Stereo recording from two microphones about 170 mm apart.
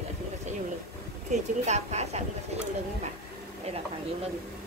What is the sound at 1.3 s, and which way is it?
Speech, 40° right (ahead or behind).